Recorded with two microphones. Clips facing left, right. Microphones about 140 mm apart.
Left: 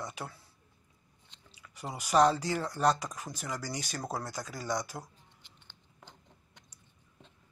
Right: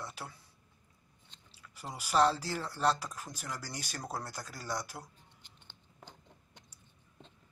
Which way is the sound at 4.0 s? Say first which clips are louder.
Left 2 dB; 10° left (ahead or behind).